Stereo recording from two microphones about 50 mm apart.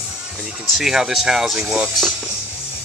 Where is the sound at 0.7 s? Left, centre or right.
Centre.